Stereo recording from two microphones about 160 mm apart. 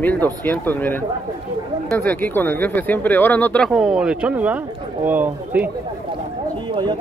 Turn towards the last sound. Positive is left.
turn(degrees=-30)  # may be behind; listen again after turning